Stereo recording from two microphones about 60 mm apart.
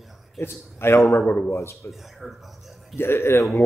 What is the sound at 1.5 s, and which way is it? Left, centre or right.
Speech, left.